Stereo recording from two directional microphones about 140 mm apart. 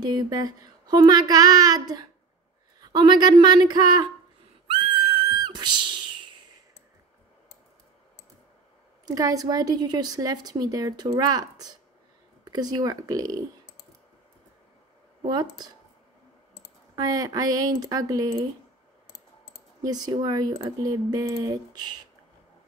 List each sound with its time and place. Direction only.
0.0 s a woman's voice: 30° right (ahead or behind)
4.6 s a sound: 35° right (ahead or behind)
9.0 s a woman's voice: 25° right (ahead or behind)
15.2 s a woman's voice: 30° right (ahead or behind)
16.9 s a woman's voice: 25° right (ahead or behind)
19.8 s a woman's voice: 25° right (ahead or behind)